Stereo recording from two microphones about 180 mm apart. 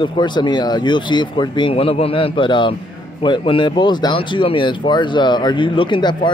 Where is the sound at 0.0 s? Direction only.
25° left (ahead or behind).